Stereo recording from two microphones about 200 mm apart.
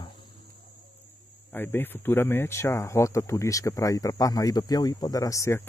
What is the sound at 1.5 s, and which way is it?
Speech, 10° left (ahead or behind).